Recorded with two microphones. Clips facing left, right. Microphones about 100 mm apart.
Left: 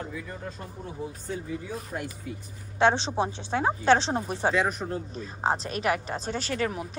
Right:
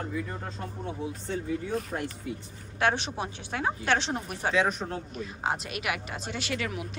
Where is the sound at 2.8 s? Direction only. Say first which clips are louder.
Left 5 dB; 30° left (ahead or behind).